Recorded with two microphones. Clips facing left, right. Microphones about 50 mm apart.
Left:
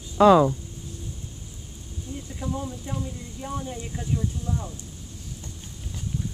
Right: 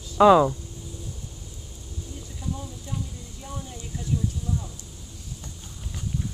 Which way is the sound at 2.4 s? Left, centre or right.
Left.